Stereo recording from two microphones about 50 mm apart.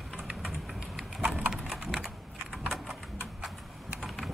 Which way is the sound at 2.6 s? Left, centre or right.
Centre.